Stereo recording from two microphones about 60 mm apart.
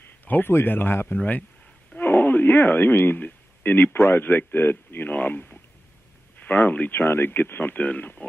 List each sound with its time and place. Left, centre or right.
0.2 s speech: left
7.0 s speech: left